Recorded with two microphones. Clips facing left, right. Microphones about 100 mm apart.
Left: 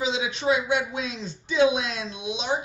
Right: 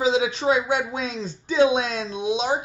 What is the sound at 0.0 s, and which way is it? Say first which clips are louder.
Speech: right 5 dB; 40° right (ahead or behind).